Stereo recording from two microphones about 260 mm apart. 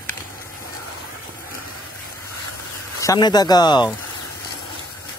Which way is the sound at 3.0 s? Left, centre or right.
Centre.